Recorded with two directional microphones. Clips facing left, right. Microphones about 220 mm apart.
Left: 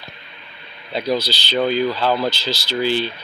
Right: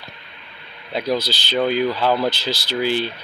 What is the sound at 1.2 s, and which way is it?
Speech, 50° right (ahead or behind).